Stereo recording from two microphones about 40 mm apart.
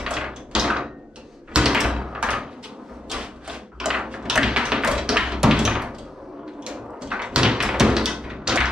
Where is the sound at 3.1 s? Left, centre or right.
Centre.